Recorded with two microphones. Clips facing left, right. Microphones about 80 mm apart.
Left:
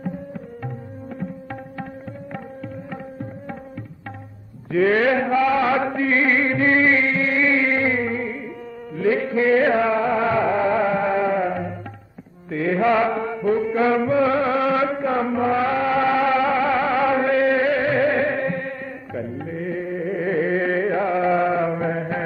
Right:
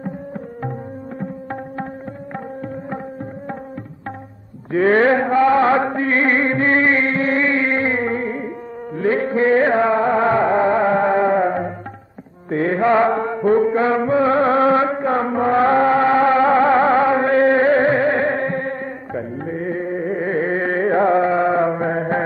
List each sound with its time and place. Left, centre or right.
4.7 s music: right